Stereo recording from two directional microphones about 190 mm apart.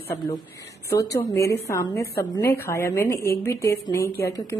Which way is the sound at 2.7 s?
15° left (ahead or behind).